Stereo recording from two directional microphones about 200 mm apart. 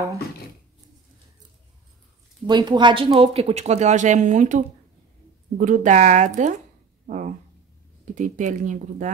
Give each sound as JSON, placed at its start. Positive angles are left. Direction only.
{"t": 2.4, "sound": "speech", "side_deg": -20}
{"t": 7.1, "sound": "a sound", "side_deg": -40}
{"t": 8.0, "sound": "speech", "side_deg": -40}